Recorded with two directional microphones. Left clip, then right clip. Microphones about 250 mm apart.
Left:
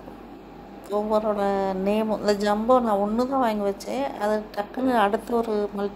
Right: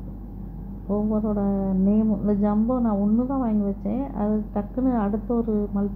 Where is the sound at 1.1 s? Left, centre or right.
Left.